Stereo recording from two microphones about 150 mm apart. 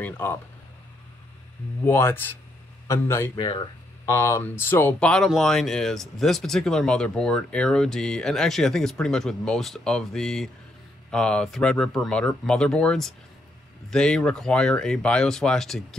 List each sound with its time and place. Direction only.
0.0 s speech: 15° left (ahead or behind)
1.9 s speech: 15° left (ahead or behind)
3.3 s speech: 35° left (ahead or behind)
4.0 s speech: 20° left (ahead or behind); by 16.0 s 5° left (ahead or behind)